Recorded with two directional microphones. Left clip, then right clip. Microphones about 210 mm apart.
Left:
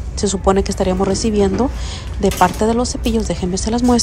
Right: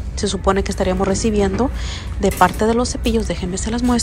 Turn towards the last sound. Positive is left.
turn(degrees=15)  # may be behind; listen again after turning